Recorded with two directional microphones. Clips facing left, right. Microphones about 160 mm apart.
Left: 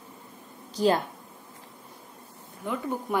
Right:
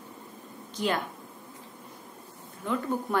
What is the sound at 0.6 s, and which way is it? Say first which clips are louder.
Speech: left 6 dB; 35° left (ahead or behind).